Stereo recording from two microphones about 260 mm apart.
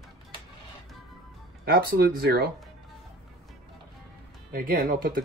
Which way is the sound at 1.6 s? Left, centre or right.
Right.